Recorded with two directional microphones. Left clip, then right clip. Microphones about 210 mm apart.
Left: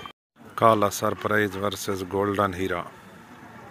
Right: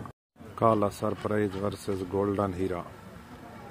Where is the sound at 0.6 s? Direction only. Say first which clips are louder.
Left 5 dB; centre (ahead or behind).